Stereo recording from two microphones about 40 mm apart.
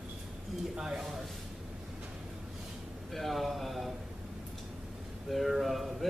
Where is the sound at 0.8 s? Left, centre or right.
Centre.